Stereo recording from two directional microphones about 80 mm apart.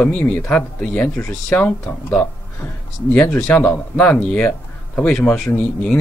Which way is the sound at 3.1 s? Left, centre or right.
Centre.